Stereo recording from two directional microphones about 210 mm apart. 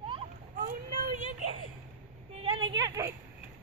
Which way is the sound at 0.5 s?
45° right (ahead or behind).